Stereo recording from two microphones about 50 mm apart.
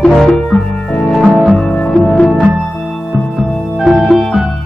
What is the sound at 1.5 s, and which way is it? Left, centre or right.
Music, centre.